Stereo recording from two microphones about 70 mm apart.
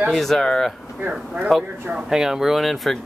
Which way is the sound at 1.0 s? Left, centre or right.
Centre.